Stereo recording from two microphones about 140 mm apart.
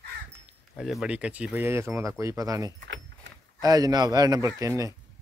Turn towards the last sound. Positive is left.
turn(degrees=-25)  # may be behind; listen again after turning